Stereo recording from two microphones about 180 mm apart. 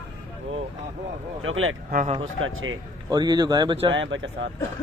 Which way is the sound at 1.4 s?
90° right.